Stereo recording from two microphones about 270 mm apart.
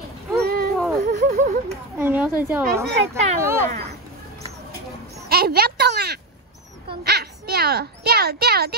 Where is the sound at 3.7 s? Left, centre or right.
Right.